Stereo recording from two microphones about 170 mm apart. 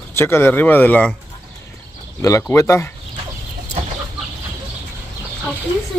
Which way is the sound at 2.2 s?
15° left (ahead or behind).